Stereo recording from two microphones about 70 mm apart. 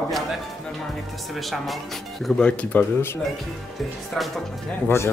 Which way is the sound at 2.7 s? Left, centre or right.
Left.